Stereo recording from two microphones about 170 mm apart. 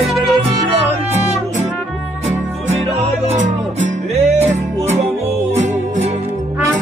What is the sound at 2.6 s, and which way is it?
Music, 40° right (ahead or behind).